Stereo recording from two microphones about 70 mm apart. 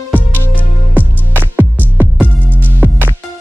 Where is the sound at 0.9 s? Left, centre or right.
Right.